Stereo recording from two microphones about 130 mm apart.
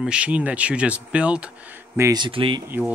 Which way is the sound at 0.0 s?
10° right (ahead or behind).